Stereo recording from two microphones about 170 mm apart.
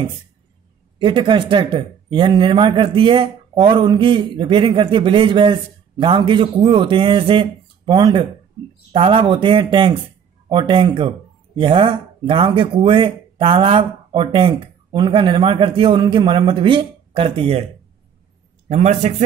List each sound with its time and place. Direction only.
0.9 s speech: 30° right (ahead or behind)
18.7 s speech: 40° right (ahead or behind)